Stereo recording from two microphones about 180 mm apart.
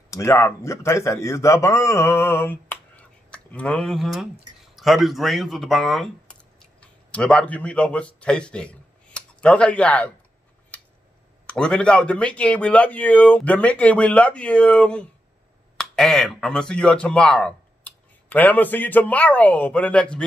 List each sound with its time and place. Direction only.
0.1 s a man's voice: 15° left (ahead or behind)
11.4 s a man's voice: 5° left (ahead or behind)